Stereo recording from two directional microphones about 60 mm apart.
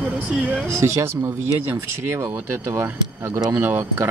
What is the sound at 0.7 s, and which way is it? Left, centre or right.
Speech, right.